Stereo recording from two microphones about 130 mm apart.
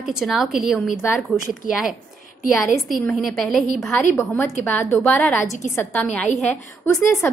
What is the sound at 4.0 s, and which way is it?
Speech, 15° left (ahead or behind).